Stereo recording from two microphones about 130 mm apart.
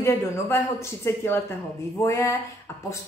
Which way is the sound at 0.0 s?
20° left (ahead or behind).